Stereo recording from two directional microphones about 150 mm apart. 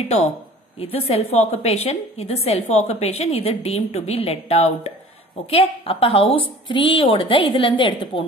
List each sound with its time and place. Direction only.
0.7 s a woman's voice: 40° left (ahead or behind)